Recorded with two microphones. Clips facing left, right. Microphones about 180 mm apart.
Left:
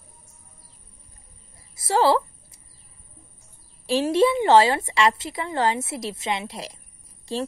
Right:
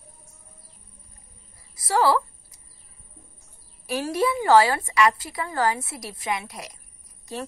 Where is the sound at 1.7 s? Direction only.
25° left (ahead or behind).